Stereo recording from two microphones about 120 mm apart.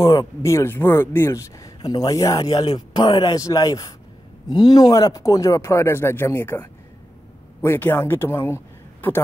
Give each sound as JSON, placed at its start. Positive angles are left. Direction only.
{"t": 0.0, "sound": "speech", "side_deg": 30}